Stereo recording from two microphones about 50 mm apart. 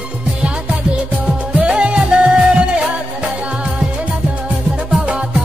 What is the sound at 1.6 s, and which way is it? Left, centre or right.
Music, right.